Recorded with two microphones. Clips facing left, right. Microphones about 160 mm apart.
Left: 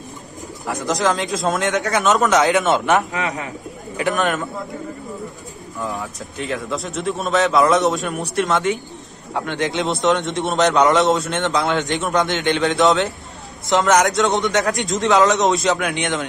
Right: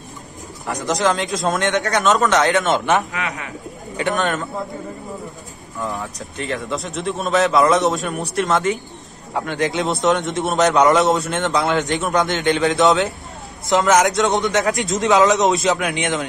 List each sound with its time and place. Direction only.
0.7 s a man's voice: centre (ahead or behind)
3.1 s a man's voice: 20° left (ahead or behind)
3.9 s a man's voice: centre (ahead or behind)
5.8 s a man's voice: centre (ahead or behind)